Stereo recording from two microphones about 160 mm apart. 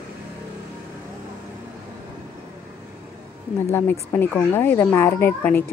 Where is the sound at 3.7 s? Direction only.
15° left (ahead or behind).